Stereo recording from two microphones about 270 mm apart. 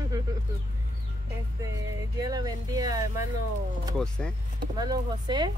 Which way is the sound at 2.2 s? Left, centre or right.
Centre.